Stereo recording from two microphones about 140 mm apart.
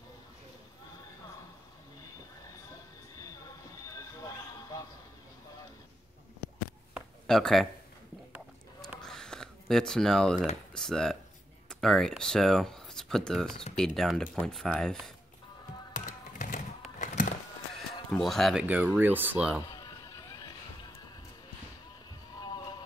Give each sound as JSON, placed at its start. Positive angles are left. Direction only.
{"t": 7.2, "sound": "speech", "side_deg": 5}
{"t": 9.0, "sound": "a sound", "side_deg": 5}
{"t": 10.7, "sound": "speech", "side_deg": 5}
{"t": 15.9, "sound": "music", "side_deg": 65}
{"t": 17.0, "sound": "a sound", "side_deg": 60}
{"t": 18.1, "sound": "speech", "side_deg": 0}
{"t": 19.7, "sound": "run", "side_deg": 25}
{"t": 22.4, "sound": "music", "side_deg": 30}